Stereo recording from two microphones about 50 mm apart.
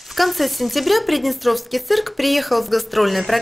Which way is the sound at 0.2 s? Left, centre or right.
Centre.